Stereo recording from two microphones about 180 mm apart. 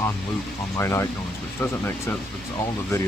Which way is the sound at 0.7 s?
15° left (ahead or behind).